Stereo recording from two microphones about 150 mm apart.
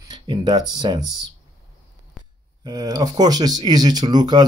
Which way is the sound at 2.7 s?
25° right (ahead or behind).